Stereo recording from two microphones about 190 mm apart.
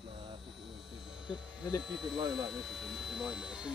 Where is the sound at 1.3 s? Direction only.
5° right (ahead or behind).